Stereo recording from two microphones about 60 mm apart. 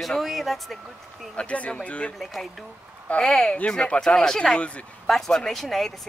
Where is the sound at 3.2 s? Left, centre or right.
Centre.